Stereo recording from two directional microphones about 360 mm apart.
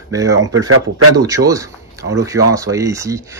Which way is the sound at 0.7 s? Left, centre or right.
Right.